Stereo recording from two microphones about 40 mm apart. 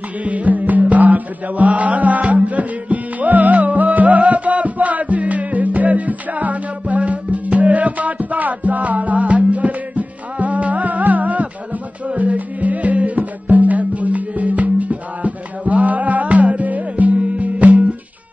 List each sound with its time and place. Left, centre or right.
0.2 s music: right